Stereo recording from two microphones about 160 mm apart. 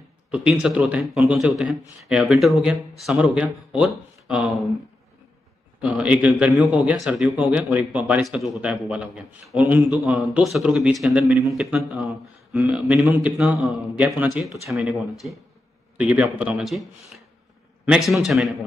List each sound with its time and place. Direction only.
0.3 s speech: 5° right (ahead or behind)
5.8 s speech: 5° right (ahead or behind)